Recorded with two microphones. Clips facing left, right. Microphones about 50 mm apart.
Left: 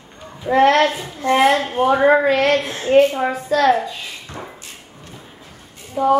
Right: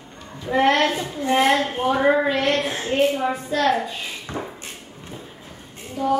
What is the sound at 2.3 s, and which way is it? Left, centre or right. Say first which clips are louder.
A woman's voice: left 4 dB; left.